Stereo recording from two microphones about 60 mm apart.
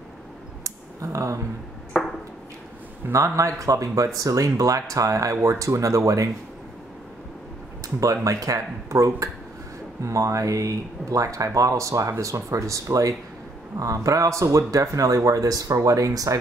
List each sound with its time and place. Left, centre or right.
0.7 s a sound: right
2.0 s ping: centre
3.1 s speech: right
8.0 s speech: right